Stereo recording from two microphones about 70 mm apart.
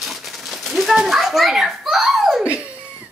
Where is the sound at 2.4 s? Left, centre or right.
Centre.